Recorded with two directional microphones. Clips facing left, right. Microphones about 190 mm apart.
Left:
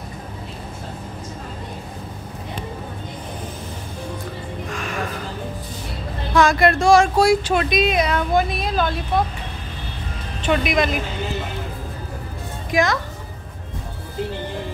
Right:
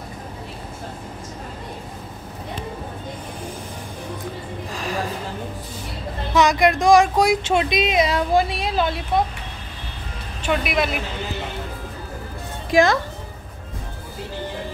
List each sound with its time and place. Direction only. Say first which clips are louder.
4.6 s a sound: right 1 dB; 35° right (ahead or behind)
6.3 s speech: left 1 dB; 20° right (ahead or behind)
10.4 s speech: left 2 dB; 5° right (ahead or behind)
12.7 s speech: right 3 dB; 30° right (ahead or behind)